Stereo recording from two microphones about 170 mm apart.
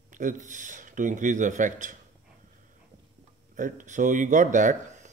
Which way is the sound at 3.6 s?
50° right (ahead or behind).